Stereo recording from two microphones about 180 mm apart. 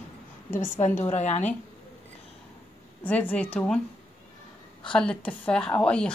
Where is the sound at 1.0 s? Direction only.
40° left (ahead or behind).